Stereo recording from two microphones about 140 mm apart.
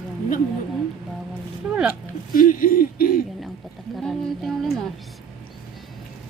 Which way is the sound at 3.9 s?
Centre (ahead or behind).